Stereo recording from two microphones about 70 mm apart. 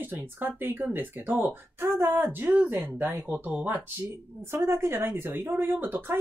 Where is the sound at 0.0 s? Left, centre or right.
Right.